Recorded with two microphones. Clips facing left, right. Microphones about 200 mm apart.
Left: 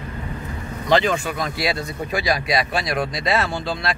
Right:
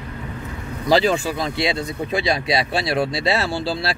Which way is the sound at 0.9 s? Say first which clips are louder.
Right 2 dB; 35° right (ahead or behind).